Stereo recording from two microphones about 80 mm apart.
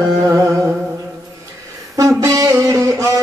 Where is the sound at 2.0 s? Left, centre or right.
Right.